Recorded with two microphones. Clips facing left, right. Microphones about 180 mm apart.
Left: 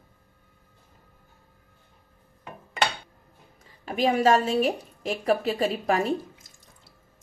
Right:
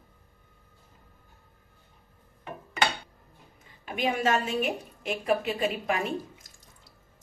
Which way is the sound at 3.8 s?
35° left (ahead or behind).